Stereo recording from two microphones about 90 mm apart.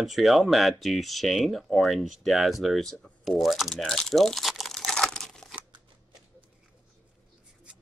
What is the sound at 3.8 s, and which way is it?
Crumpling, 5° left (ahead or behind).